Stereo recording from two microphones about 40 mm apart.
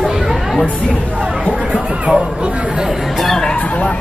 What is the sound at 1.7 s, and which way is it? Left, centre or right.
Speech, right.